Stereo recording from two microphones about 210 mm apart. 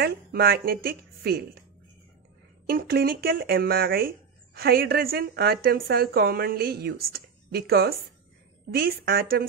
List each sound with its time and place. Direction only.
0.0 s a woman's voice: 45° right (ahead or behind)
2.6 s a woman's voice: 45° right (ahead or behind)